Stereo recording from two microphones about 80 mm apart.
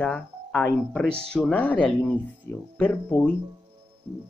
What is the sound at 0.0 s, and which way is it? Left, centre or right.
Speech, centre.